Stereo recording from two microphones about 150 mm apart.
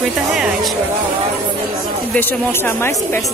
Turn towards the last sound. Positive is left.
turn(degrees=15)  # may be behind; listen again after turning